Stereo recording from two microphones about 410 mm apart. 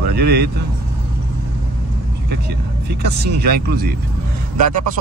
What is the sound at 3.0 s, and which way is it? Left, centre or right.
Speech, right.